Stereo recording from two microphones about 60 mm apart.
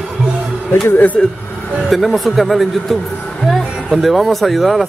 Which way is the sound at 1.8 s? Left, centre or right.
Centre.